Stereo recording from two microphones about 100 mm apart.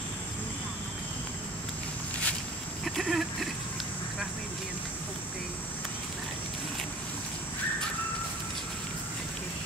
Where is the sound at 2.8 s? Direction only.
Centre (ahead or behind).